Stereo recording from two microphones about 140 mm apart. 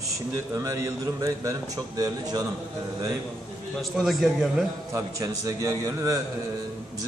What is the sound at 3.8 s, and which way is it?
Speech, centre (ahead or behind).